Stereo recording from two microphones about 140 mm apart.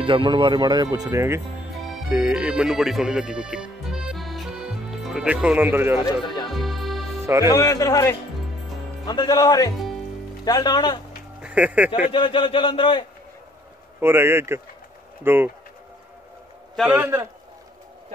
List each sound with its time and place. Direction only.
0.0 s speech: 35° right (ahead or behind); by 1.4 s 20° right (ahead or behind)
2.0 s speech: 10° right (ahead or behind)
6.2 s speech: 30° left (ahead or behind)
6.5 s music: centre (ahead or behind)
7.4 s speech: 25° left (ahead or behind)
11.4 s speech: 10° right (ahead or behind)
12.1 s speech: 35° left (ahead or behind)
13.9 s speech: 15° right (ahead or behind)
16.9 s speech: 20° right (ahead or behind)